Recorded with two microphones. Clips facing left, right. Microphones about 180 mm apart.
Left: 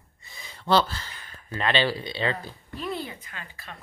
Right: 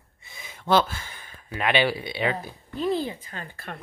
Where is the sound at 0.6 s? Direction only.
15° right (ahead or behind).